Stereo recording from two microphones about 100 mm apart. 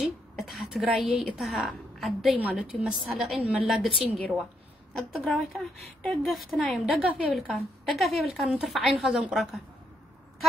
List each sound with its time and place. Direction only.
0.0 s a woman's voice: centre (ahead or behind)
5.2 s a woman's voice: 5° left (ahead or behind)